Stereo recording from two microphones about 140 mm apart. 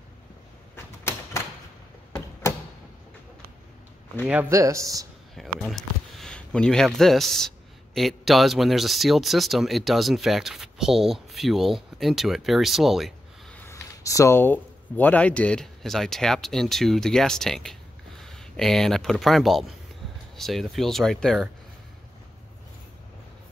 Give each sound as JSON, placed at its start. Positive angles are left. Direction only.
{"t": 4.3, "sound": "speech", "side_deg": -15}
{"t": 5.6, "sound": "speech", "side_deg": 0}
{"t": 13.6, "sound": "speech", "side_deg": 20}